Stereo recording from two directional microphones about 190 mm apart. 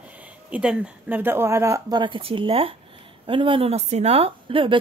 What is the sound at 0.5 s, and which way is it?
Speech, 5° right (ahead or behind).